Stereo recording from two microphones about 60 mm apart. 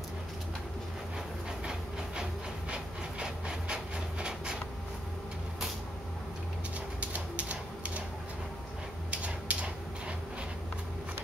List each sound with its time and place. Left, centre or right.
2.7 s wood: centre
7.0 s typewriter: right
9.1 s a sound: right